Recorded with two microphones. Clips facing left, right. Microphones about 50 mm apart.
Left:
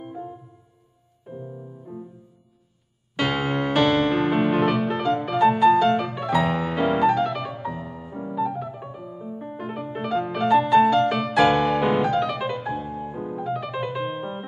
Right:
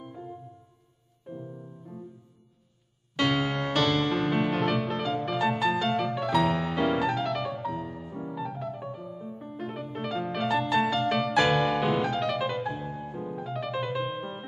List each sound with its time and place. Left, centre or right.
0.0 s music: centre
3.2 s music: centre